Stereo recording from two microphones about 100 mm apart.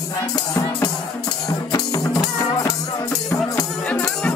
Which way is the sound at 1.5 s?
40° left (ahead or behind).